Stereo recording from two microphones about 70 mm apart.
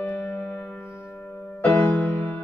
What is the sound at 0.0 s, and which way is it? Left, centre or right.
Music, left.